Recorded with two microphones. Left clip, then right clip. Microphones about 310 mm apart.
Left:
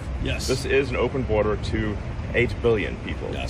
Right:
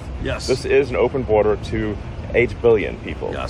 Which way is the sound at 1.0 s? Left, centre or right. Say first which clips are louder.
Right 6 dB; right.